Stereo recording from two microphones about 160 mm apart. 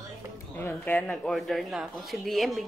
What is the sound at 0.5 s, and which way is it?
Speech, 10° left (ahead or behind).